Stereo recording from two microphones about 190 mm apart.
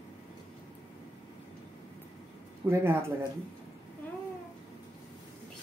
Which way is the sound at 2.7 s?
15° right (ahead or behind).